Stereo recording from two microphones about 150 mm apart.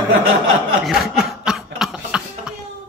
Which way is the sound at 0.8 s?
Centre (ahead or behind).